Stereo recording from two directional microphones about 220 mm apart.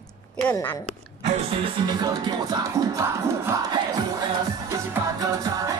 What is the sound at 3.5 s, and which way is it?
Crowd, 15° right (ahead or behind).